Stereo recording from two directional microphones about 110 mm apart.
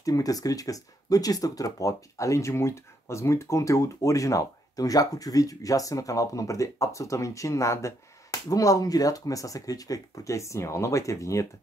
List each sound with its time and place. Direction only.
0.0 s speech: 35° left (ahead or behind)